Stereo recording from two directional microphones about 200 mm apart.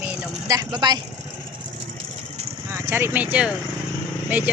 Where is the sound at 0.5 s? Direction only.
20° right (ahead or behind).